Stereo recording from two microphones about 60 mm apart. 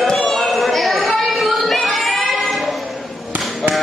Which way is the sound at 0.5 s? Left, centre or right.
Centre.